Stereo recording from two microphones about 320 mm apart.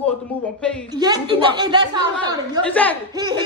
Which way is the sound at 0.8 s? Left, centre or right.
Centre.